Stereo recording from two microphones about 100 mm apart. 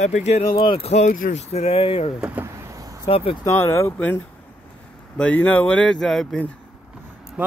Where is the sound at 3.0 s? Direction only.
70° left (ahead or behind).